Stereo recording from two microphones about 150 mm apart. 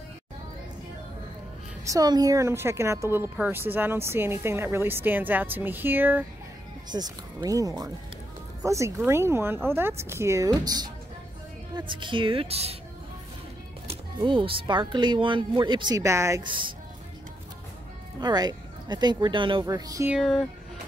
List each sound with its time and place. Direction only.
1.9 s a woman's voice: 25° right (ahead or behind)
6.9 s a woman's voice: 30° right (ahead or behind)
13.8 s speech: 35° right (ahead or behind); by 16.4 s 20° right (ahead or behind)
16.4 s speech: 35° right (ahead or behind)
18.2 s speech: 30° right (ahead or behind)
20.1 s speech: centre (ahead or behind)